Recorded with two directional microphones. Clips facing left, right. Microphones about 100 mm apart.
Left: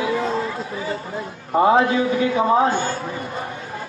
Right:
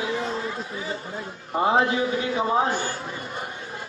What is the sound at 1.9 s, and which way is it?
Speech, 30° right (ahead or behind).